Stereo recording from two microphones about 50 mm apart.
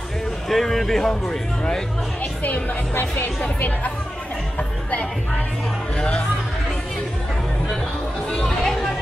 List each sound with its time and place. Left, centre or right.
0.5 s speech: centre
2.4 s speech: left
8.5 s chatter: centre